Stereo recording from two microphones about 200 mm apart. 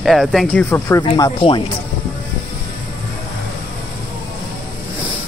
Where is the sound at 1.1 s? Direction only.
25° left (ahead or behind).